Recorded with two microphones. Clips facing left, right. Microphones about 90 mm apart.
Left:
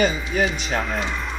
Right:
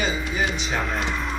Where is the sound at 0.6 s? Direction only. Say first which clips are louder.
Left 1 dB; centre (ahead or behind).